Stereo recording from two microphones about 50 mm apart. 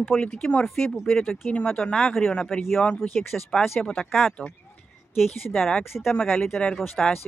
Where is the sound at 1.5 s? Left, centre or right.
Left.